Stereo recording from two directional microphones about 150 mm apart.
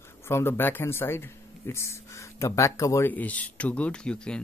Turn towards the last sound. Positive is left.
turn(degrees=5)  # may be behind; listen again after turning